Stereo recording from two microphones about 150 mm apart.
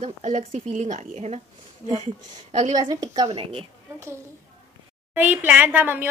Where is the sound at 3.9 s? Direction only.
20° right (ahead or behind).